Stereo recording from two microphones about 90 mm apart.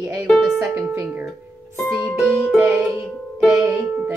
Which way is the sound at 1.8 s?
35° left (ahead or behind).